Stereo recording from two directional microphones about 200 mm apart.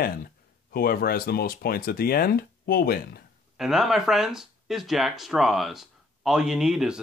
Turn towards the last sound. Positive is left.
turn(degrees=-5)  # may be behind; listen again after turning